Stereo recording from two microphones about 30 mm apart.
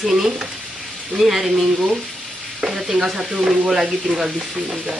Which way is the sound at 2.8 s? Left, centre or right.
Centre.